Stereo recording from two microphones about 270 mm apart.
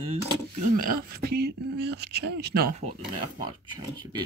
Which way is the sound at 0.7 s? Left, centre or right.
Right.